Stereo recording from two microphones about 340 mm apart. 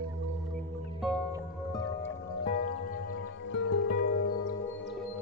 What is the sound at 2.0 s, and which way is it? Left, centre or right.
Music, left.